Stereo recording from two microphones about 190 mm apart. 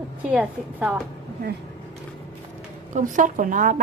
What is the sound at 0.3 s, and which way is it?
Speech, 5° right (ahead or behind).